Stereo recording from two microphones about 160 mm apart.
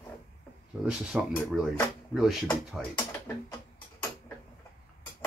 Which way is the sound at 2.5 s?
10° left (ahead or behind).